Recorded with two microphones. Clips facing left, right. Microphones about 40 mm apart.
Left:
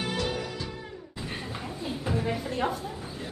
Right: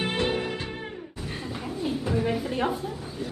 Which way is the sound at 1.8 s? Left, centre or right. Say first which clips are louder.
Right 4 dB; centre.